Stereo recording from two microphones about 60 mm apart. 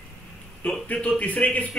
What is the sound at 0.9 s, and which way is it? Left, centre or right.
Speech, left.